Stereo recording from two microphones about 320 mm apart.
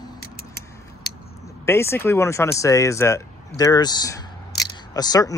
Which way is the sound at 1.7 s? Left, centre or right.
Centre.